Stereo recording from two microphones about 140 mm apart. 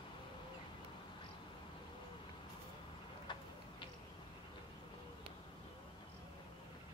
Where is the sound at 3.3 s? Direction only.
35° left (ahead or behind).